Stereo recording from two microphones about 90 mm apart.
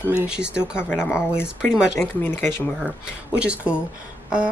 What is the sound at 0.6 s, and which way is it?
Speech, 25° left (ahead or behind).